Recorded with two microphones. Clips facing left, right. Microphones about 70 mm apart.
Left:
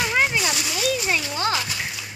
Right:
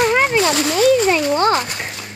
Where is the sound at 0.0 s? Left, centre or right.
Right.